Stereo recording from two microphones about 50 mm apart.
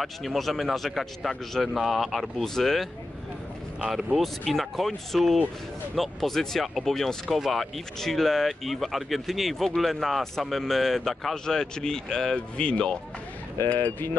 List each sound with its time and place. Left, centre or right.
0.0 s speech: centre
4.2 s speech: centre
12.4 s speech: left